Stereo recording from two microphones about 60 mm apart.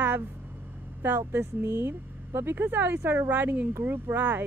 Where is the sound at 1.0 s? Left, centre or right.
Right.